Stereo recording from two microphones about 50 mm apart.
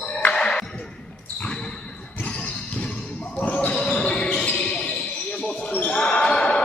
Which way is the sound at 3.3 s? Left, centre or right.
Left.